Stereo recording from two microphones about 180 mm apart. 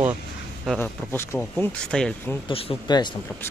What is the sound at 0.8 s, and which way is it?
Speech, 10° left (ahead or behind).